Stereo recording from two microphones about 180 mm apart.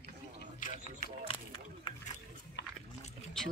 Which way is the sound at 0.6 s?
45° left (ahead or behind).